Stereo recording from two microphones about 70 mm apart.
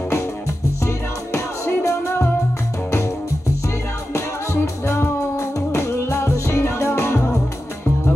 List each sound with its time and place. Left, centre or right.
1.3 s music: left
4.8 s music: left